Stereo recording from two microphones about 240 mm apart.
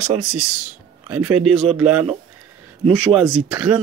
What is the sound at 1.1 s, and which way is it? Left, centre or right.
Speech, right.